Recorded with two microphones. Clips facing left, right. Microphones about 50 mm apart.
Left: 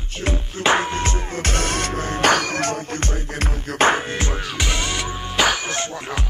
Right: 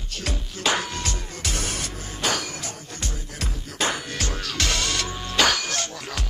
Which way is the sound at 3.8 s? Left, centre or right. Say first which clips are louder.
Left 9 dB; left.